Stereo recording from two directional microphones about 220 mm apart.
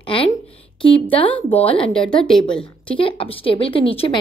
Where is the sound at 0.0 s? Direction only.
25° left (ahead or behind).